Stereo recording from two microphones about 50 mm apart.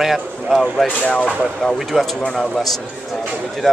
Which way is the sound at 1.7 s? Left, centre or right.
Centre.